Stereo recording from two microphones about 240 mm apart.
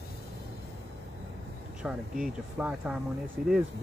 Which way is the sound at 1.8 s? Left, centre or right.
Centre.